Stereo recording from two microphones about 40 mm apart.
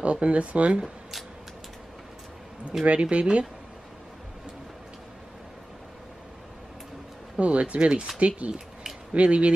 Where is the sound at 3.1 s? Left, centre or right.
Right.